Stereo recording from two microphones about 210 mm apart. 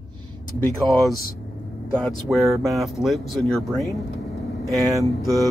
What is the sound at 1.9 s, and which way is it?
Speech, 5° left (ahead or behind).